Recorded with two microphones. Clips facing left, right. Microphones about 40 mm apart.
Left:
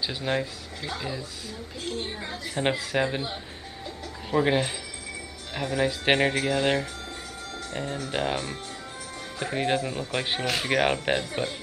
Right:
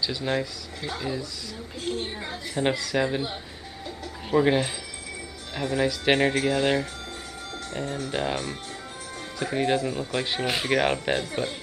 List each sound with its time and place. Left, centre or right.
0.3 s speech: centre
0.8 s speech: centre
2.7 s speech: left
3.1 s speech: centre
7.7 s speech: centre
8.1 s speech: centre
10.4 s speech: centre
10.7 s speech: centre